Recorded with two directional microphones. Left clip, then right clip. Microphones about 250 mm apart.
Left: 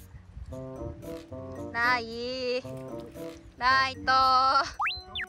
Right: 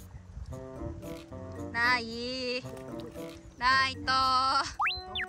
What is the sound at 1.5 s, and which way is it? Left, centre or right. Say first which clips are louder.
A child's voice: left 1 dB; centre.